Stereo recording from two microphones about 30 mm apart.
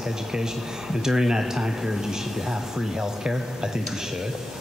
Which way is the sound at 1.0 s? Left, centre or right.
Right.